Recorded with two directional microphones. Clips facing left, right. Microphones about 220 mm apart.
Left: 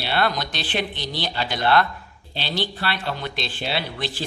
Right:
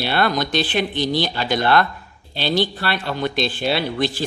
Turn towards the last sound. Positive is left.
turn(degrees=-45)  # may be behind; listen again after turning